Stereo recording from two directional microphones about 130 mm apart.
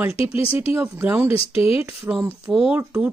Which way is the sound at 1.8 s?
20° right (ahead or behind).